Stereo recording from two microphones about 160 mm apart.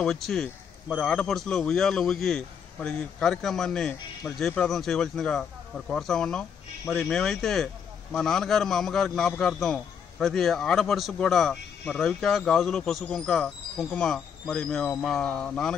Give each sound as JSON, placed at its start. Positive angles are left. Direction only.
{"t": 0.0, "sound": "a man's voice", "side_deg": 0}